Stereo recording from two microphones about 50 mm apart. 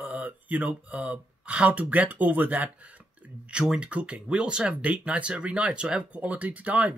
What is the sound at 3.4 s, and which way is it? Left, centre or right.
Speech, centre.